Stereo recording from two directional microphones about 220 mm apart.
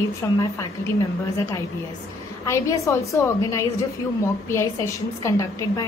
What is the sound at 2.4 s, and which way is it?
A woman's voice, 15° left (ahead or behind).